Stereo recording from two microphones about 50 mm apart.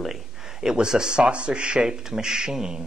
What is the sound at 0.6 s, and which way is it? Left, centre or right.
Speech, centre.